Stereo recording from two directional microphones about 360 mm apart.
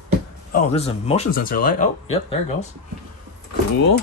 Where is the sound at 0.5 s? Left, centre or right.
Centre.